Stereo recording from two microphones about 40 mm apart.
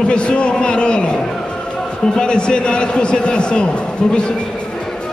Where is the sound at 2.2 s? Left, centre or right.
Left.